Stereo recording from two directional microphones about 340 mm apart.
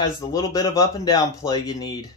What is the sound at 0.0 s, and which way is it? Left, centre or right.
Speech, centre.